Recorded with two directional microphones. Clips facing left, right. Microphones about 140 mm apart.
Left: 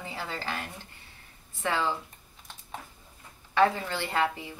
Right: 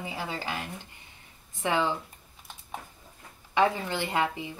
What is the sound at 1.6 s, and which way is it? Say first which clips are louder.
Speech: right 2 dB; 20° right (ahead or behind).